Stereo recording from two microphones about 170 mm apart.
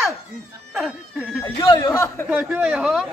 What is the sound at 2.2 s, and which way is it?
Speech, 10° right (ahead or behind).